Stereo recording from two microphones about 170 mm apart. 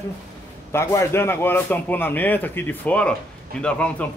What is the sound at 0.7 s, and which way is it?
A man's voice, 15° left (ahead or behind).